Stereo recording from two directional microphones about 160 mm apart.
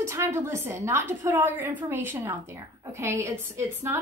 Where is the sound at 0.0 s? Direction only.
15° right (ahead or behind).